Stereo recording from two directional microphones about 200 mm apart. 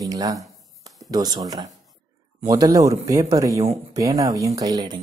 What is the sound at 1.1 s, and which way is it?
Speech, 20° right (ahead or behind).